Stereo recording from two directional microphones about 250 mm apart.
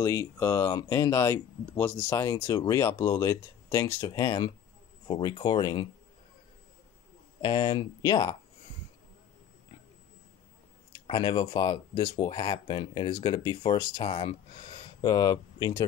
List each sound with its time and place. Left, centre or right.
0.0 s speech: centre
7.4 s speech: centre
11.1 s speech: centre